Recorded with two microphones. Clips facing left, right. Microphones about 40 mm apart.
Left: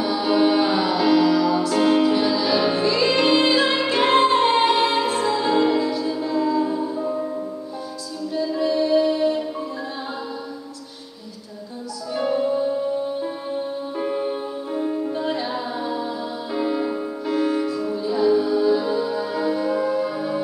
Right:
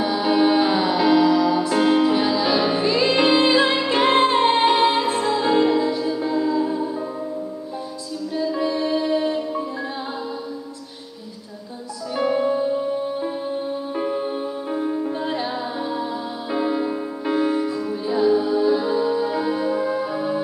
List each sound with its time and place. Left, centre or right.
0.0 s music: centre
5.1 s music: centre
8.4 s music: centre
12.2 s music: centre
14.8 s music: centre
15.0 s music: centre
15.5 s music: centre
18.0 s music: centre